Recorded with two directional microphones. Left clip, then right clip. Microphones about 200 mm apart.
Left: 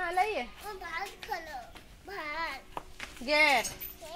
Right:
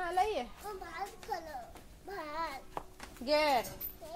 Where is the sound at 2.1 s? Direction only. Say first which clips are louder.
Left 3 dB; centre (ahead or behind).